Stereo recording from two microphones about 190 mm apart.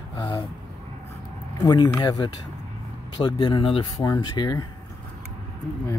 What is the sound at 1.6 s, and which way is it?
Speech, 20° left (ahead or behind).